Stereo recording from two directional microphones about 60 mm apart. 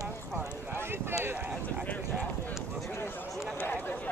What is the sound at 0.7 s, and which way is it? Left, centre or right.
Clip-clop, right.